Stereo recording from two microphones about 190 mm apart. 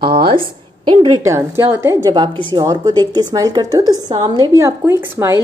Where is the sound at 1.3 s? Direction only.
15° right (ahead or behind).